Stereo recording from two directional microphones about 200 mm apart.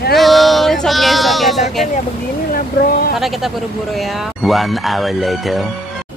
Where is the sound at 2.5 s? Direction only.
45° left (ahead or behind).